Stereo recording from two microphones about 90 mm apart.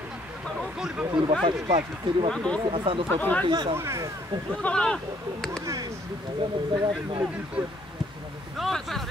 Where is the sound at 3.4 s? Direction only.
60° right (ahead or behind).